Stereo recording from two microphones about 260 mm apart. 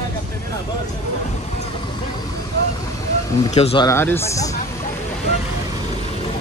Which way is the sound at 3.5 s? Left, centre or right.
Left.